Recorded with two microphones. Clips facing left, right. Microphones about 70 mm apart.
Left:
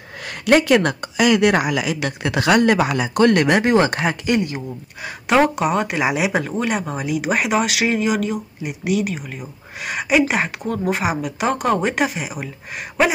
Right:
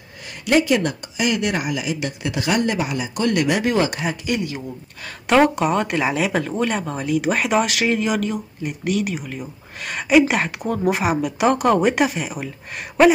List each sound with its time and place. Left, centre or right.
0.3 s speech: left
5.2 s speech: centre